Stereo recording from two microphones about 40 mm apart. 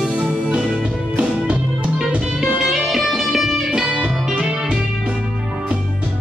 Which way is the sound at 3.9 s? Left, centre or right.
Centre.